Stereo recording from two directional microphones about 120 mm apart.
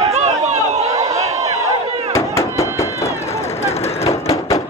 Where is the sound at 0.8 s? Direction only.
25° right (ahead or behind).